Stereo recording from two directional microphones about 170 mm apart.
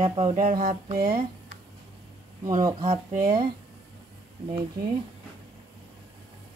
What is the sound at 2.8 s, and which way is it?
Speech, 45° right (ahead or behind).